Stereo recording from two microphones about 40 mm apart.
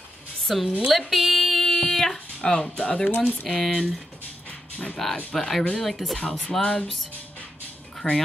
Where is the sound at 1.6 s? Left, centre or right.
Centre.